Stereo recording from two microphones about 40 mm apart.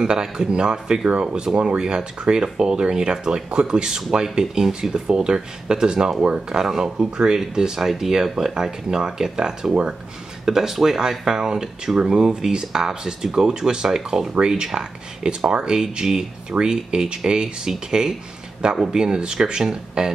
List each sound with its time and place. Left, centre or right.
0.0 s speech: centre
10.4 s speech: centre